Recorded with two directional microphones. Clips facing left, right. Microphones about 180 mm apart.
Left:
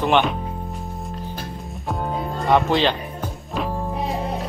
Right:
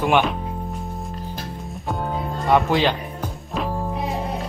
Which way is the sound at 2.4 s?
5° right (ahead or behind).